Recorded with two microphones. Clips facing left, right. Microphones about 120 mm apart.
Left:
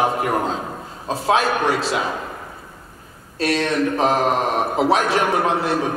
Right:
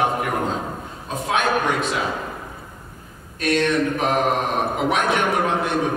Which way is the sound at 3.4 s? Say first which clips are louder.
Even; 30° left (ahead or behind).